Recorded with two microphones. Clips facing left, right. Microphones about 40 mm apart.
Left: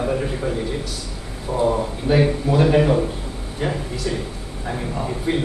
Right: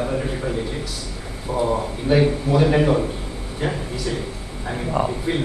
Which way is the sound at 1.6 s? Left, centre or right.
Centre.